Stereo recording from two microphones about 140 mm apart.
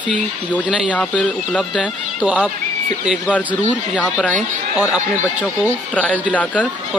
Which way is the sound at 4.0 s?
10° left (ahead or behind).